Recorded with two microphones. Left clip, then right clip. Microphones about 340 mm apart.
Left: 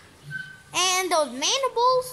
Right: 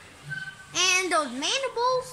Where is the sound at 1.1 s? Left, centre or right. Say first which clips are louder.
Left 3 dB; centre.